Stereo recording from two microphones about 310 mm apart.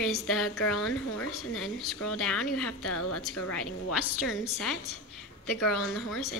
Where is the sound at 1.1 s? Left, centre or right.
Left.